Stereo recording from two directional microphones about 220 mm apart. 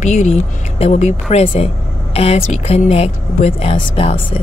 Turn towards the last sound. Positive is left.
turn(degrees=25)  # may be behind; listen again after turning